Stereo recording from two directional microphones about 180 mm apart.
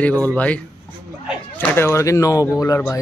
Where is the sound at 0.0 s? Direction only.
10° left (ahead or behind).